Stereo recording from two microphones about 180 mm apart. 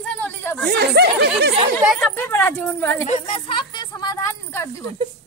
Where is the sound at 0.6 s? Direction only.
65° right (ahead or behind).